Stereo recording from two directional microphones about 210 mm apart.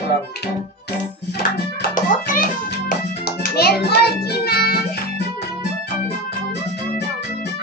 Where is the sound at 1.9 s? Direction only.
40° left (ahead or behind).